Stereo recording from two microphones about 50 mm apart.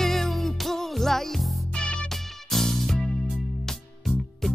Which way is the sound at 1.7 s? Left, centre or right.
Left.